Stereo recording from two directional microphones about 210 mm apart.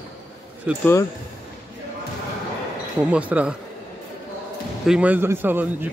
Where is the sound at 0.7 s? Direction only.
5° right (ahead or behind).